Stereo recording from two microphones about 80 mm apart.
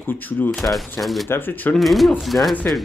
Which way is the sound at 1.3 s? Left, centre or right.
Left.